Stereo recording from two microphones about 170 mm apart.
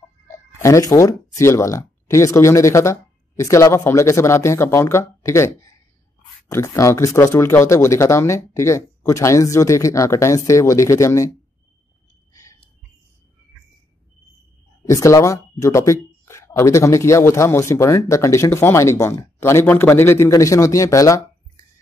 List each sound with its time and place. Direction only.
0.6 s speech: 20° left (ahead or behind)
14.9 s speech: 20° left (ahead or behind)